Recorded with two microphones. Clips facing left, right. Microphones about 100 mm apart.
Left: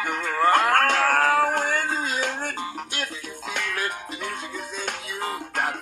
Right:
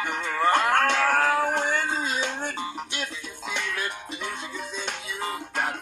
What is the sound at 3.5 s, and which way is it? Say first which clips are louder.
Music: left 2 dB; 60° left (ahead or behind).